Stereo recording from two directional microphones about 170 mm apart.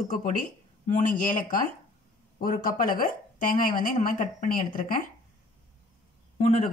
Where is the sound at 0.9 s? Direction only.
50° left (ahead or behind).